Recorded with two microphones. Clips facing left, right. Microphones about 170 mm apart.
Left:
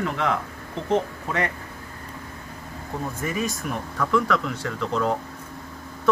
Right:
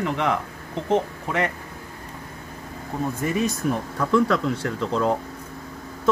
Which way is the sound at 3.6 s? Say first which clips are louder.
Right 4 dB; 30° right (ahead or behind).